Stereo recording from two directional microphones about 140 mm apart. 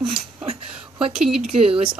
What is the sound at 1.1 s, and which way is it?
Speech, 5° right (ahead or behind).